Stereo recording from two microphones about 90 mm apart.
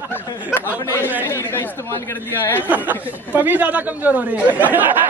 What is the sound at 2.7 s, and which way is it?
Speech, 20° right (ahead or behind).